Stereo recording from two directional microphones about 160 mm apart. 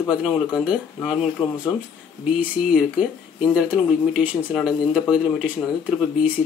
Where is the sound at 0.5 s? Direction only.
5° right (ahead or behind).